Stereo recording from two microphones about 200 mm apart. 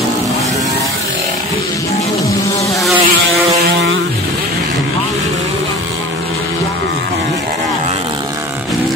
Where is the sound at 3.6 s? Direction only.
60° right (ahead or behind).